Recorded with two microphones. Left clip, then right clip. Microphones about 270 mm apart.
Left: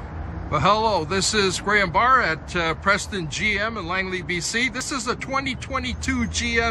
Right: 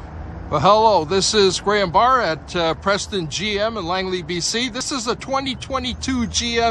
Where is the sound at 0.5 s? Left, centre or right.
Centre.